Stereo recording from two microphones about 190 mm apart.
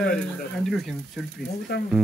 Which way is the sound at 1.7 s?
60° left (ahead or behind).